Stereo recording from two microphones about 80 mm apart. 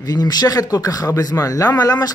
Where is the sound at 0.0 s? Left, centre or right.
Left.